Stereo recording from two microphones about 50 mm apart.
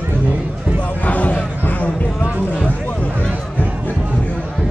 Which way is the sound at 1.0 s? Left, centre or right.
Left.